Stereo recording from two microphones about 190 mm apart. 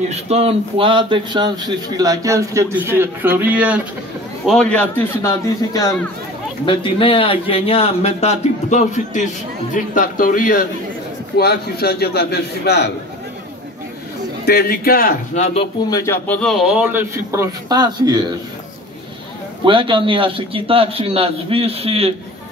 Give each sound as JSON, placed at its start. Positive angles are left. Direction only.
{"t": 0.1, "sound": "a man's voice", "side_deg": -35}
{"t": 4.5, "sound": "a man's voice", "side_deg": 5}
{"t": 14.4, "sound": "a man's voice", "side_deg": 55}
{"t": 15.9, "sound": "a man's voice", "side_deg": 15}
{"t": 19.6, "sound": "a man's voice", "side_deg": -25}